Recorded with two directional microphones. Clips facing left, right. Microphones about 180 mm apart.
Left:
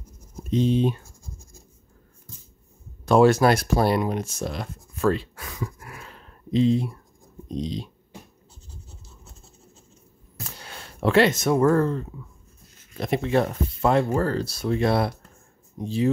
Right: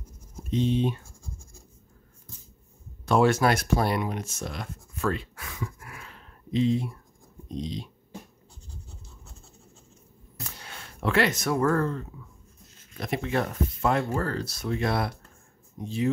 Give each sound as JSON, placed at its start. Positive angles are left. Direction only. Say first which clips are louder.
{"t": 0.5, "sound": "speech", "louder": "left 4 dB", "side_deg": 35}
{"t": 3.1, "sound": "speech", "louder": "left 5 dB", "side_deg": 35}
{"t": 10.6, "sound": "speech", "louder": "left 7 dB", "side_deg": 35}